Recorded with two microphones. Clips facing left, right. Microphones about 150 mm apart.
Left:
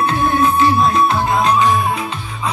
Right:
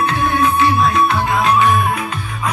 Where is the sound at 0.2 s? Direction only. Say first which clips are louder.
Left 1 dB; 35° left (ahead or behind).